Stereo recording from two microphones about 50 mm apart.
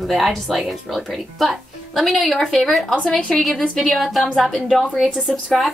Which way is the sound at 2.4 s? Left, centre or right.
Centre.